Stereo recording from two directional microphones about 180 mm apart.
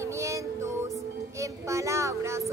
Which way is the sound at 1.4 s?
15° right (ahead or behind).